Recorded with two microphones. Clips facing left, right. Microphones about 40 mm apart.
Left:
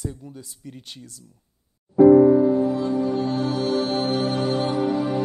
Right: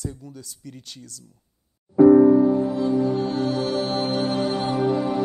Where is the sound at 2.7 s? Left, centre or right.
Centre.